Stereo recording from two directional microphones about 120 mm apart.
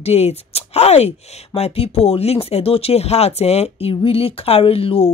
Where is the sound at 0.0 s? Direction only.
60° left (ahead or behind).